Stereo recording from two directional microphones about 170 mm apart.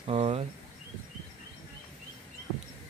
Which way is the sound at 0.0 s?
35° right (ahead or behind).